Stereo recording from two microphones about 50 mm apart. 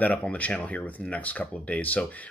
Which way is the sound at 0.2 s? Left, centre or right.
Left.